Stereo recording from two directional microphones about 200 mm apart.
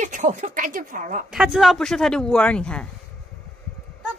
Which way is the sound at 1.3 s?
5° right (ahead or behind).